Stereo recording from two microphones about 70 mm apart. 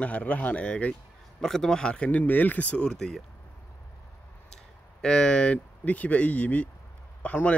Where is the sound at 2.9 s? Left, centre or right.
Centre.